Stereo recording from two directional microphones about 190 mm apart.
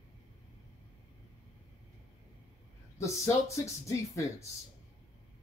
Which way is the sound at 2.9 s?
15° left (ahead or behind).